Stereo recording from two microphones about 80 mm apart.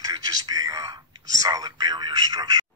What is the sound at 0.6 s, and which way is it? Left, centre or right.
Speech, right.